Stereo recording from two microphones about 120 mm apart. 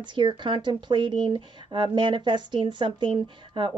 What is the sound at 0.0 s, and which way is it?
Speech, 40° right (ahead or behind).